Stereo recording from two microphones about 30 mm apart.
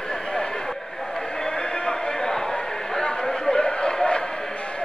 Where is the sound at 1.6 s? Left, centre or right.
Left.